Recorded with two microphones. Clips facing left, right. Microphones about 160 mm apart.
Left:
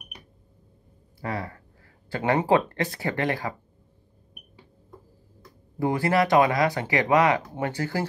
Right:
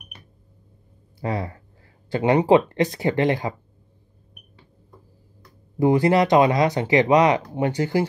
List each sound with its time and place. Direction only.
1.2 s speech: 20° right (ahead or behind)
5.8 s speech: 20° right (ahead or behind)